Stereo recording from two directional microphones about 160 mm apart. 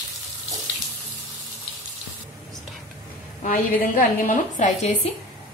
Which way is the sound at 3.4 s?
55° left (ahead or behind).